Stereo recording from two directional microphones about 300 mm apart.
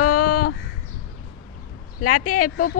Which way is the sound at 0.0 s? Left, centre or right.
Left.